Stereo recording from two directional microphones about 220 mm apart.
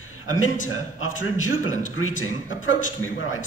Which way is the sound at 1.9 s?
75° left (ahead or behind).